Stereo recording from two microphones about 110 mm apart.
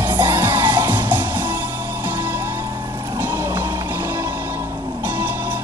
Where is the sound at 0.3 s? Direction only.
20° right (ahead or behind).